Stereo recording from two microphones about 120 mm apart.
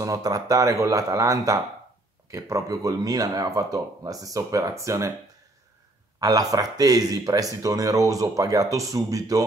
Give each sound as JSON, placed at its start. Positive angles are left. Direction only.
{"t": 0.0, "sound": "speech", "side_deg": -30}
{"t": 6.1, "sound": "a man's voice", "side_deg": -30}